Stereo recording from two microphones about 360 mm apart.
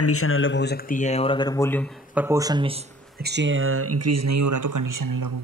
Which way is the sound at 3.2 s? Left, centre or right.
Right.